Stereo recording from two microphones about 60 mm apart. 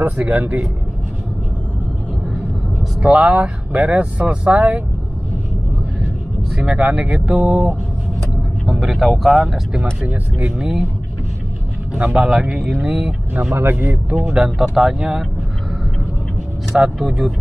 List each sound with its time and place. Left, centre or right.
0.0 s speech: right
3.0 s speech: centre
6.5 s speech: centre
7.1 s speech: centre
9.4 s speech: centre
12.1 s speech: centre
13.3 s speech: right
14.3 s speech: centre
16.7 s speech: centre